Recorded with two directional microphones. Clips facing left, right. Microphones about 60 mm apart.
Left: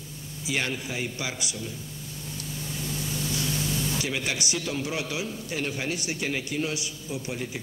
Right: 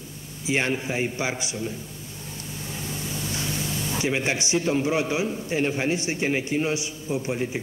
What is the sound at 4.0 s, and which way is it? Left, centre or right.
A man's voice, right.